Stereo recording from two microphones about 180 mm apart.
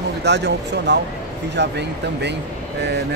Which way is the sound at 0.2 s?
70° right (ahead or behind).